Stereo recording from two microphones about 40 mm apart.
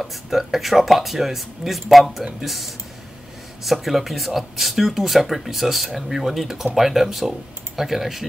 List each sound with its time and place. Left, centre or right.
0.0 s speech: centre